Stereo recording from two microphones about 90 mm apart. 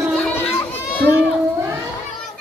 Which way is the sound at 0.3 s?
25° left (ahead or behind).